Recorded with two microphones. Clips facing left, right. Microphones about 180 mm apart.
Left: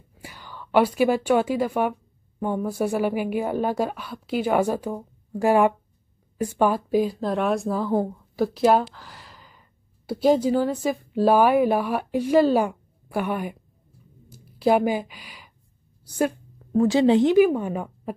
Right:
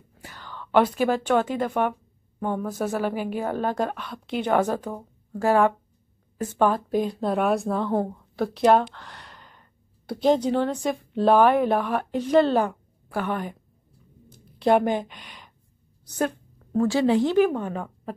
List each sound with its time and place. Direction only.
0.1 s a woman's voice: 10° left (ahead or behind)
14.3 s a sound: 5° left (ahead or behind)
16.1 s a woman's voice: 10° left (ahead or behind)
17.4 s a woman's voice: 10° left (ahead or behind)